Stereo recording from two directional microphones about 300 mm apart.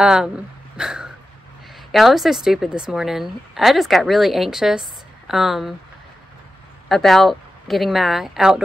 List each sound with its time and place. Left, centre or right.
0.0 s a woman's voice: centre
0.7 s a sound: centre
1.9 s a woman's voice: centre
6.9 s a woman's voice: centre